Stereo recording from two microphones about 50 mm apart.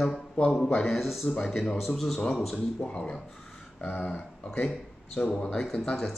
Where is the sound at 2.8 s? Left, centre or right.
Left.